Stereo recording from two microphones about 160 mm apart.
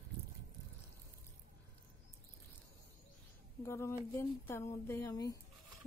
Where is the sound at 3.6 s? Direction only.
15° left (ahead or behind).